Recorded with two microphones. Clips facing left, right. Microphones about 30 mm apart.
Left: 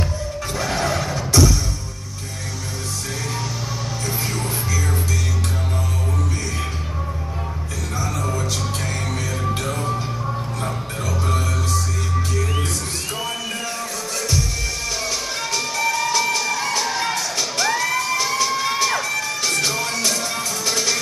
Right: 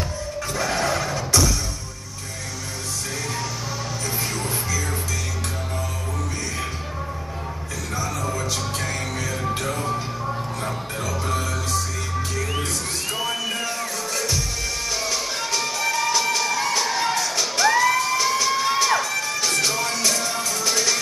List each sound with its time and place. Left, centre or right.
0.6 s music: centre
4.3 s music: centre
7.9 s music: centre
13.2 s music: centre
15.0 s music: centre